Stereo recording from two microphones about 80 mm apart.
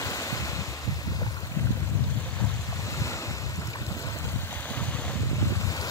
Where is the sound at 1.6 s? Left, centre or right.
Left.